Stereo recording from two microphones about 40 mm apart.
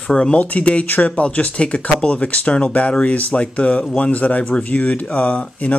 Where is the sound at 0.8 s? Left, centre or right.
Left.